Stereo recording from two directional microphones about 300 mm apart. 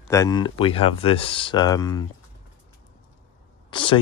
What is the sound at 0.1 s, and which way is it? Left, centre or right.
Speech, centre.